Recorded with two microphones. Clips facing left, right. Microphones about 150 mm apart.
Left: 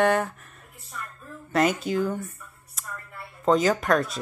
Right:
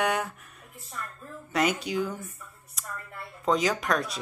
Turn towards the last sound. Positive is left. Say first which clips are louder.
# left 5 dB
turn(degrees=0)  # may be behind; listen again after turning